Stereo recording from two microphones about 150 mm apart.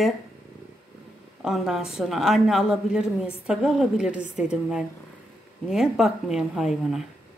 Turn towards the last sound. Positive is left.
turn(degrees=0)  # may be behind; listen again after turning